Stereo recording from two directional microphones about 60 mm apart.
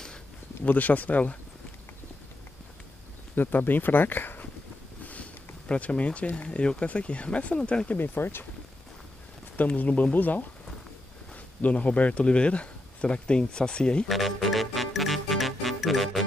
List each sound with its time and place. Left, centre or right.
0.7 s speech: left
3.3 s speech: left
5.0 s sniff: left
5.7 s speech: left
8.0 s speech: left
9.6 s speech: left
11.6 s speech: left
14.0 s music: centre